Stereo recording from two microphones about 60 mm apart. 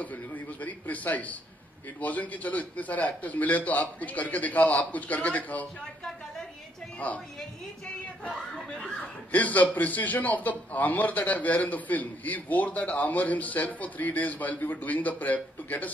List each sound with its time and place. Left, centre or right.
0.0 s a man's voice: left
7.0 s a man's voice: left
9.3 s a man's voice: left